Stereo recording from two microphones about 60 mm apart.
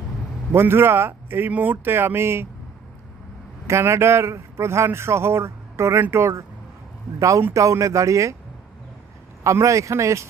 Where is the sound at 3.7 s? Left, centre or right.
Right.